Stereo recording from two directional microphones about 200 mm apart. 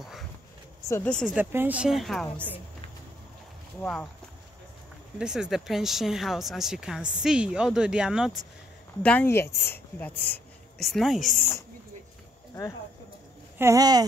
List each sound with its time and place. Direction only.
0.8 s speech: 10° left (ahead or behind)
3.8 s speech: 5° left (ahead or behind)
5.2 s speech: 5° right (ahead or behind)
9.0 s a woman's voice: 10° left (ahead or behind)
13.6 s speech: 15° right (ahead or behind)